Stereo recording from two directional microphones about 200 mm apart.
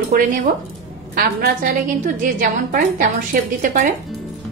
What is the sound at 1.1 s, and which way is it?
A woman's voice, 45° right (ahead or behind).